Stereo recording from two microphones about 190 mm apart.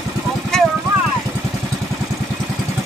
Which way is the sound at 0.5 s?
5° left (ahead or behind).